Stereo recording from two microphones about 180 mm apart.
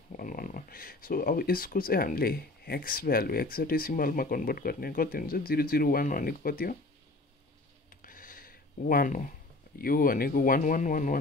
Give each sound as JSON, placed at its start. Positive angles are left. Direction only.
{"t": 0.1, "sound": "speech", "side_deg": 50}
{"t": 8.0, "sound": "a sound", "side_deg": 50}
{"t": 9.8, "sound": "speech", "side_deg": 55}